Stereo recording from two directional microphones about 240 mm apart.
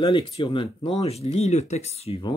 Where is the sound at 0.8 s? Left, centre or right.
Left.